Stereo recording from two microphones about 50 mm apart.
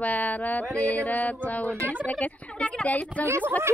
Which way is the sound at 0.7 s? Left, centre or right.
Left.